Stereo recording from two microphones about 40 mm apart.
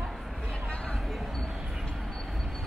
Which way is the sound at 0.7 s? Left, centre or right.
Left.